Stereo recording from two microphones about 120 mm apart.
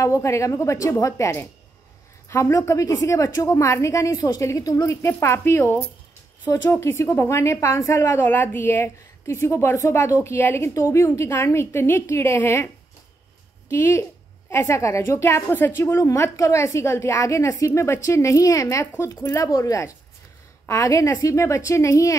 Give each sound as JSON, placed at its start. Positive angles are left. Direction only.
{"t": 0.0, "sound": "a woman's voice", "side_deg": 25}